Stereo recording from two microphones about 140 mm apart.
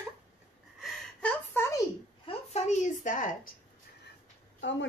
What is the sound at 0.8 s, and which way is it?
Gasp, 10° left (ahead or behind).